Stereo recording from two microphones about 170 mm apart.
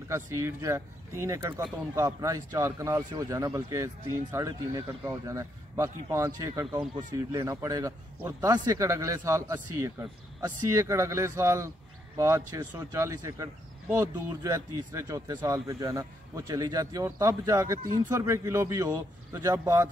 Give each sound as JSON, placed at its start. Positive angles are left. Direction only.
{"t": 0.1, "sound": "speech", "side_deg": -15}